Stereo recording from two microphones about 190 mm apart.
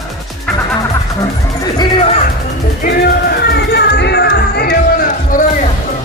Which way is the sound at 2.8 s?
55° left (ahead or behind).